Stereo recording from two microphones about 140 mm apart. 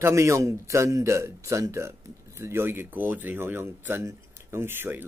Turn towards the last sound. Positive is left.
turn(degrees=-15)  # may be behind; listen again after turning